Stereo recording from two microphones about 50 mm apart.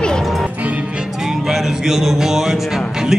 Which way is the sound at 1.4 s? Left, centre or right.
Centre.